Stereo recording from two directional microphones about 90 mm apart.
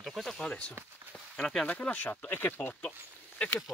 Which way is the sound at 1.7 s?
20° left (ahead or behind).